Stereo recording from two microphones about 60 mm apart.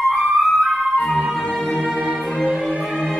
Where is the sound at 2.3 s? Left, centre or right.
Centre.